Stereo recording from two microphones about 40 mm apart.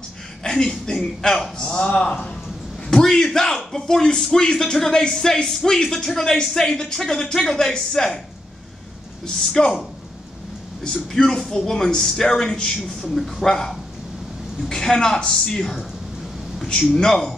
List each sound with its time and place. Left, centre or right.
0.4 s a man's voice: centre
1.9 s a man's voice: left
2.9 s a man's voice: centre
9.2 s a man's voice: centre
10.8 s a man's voice: centre
14.7 s a man's voice: centre
16.9 s a man's voice: centre